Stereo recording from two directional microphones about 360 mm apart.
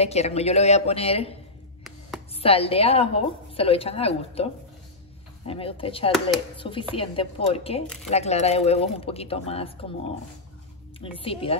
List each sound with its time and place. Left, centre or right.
0.0 s a woman's voice: centre
2.4 s a woman's voice: centre
5.5 s a woman's voice: centre
7.8 s speech: centre
8.1 s a woman's voice: centre
11.1 s a woman's voice: centre